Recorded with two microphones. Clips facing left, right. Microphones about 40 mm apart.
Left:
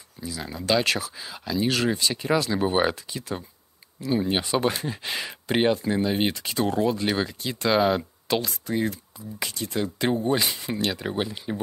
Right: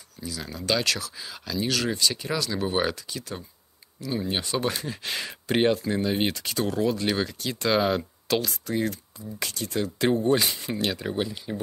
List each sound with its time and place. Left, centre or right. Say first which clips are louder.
0.2 s speech: left 1 dB; centre
6.5 s speech: left 3 dB; centre
9.8 s speech: right 1 dB; centre
11.1 s speech: left 1 dB; centre